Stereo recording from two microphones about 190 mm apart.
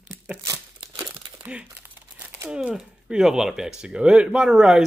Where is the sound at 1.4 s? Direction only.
10° right (ahead or behind).